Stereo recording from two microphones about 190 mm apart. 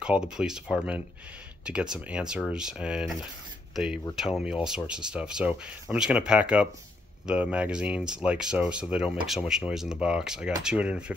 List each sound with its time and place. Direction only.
0.0 s speech: 5° right (ahead or behind)